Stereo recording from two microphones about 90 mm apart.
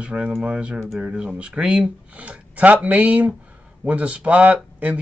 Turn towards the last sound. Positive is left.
turn(degrees=-15)  # may be behind; listen again after turning